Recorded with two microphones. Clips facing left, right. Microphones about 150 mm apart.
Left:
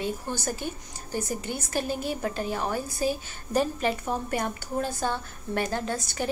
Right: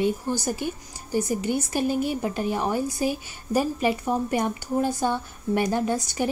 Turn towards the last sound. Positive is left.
turn(degrees=-15)  # may be behind; listen again after turning